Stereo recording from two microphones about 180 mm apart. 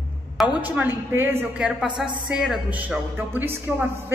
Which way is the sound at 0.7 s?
10° right (ahead or behind).